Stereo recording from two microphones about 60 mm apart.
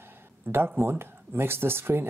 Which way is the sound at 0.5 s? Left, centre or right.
Right.